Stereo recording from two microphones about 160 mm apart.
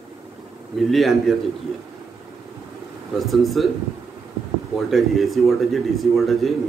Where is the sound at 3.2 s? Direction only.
Centre (ahead or behind).